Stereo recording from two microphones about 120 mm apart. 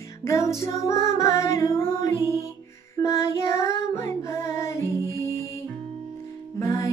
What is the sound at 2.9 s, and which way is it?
Child singing, 25° left (ahead or behind).